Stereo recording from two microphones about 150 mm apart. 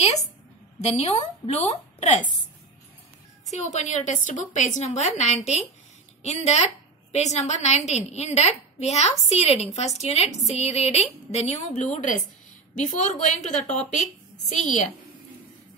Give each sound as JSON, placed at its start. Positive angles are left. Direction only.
{"t": 0.7, "sound": "a woman's voice", "side_deg": 45}
{"t": 3.5, "sound": "a woman's voice", "side_deg": 50}